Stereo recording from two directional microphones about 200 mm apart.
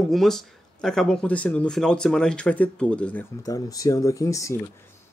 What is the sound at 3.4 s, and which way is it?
Speech, 20° left (ahead or behind).